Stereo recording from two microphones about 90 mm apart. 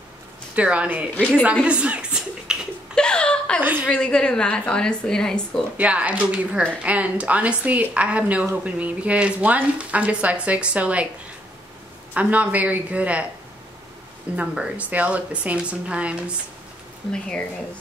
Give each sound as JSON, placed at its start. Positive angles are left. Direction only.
{"t": 0.6, "sound": "a woman's voice", "side_deg": -15}
{"t": 2.9, "sound": "a sound", "side_deg": 10}
{"t": 3.9, "sound": "a woman's voice", "side_deg": 10}
{"t": 5.8, "sound": "speech", "side_deg": -15}
{"t": 12.1, "sound": "speech", "side_deg": -15}
{"t": 14.3, "sound": "speech", "side_deg": -10}
{"t": 17.1, "sound": "a woman's voice", "side_deg": 10}